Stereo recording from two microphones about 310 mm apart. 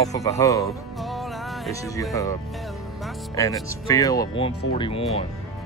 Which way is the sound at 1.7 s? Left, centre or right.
Centre.